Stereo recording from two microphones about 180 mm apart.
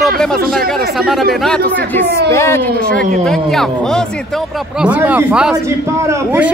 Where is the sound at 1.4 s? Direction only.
5° left (ahead or behind).